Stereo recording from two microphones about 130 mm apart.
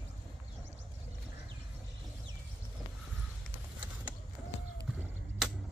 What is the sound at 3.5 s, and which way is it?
Vehicle, 10° right (ahead or behind).